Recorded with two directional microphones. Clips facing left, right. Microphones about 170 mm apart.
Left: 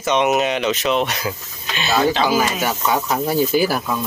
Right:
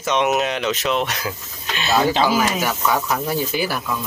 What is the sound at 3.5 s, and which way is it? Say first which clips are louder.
Speech: left 5 dB; 40° left (ahead or behind).